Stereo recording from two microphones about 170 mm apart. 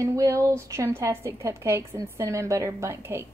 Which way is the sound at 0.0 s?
15° right (ahead or behind).